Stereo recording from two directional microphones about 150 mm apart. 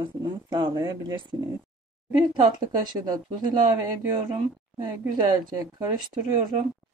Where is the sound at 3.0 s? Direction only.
25° right (ahead or behind).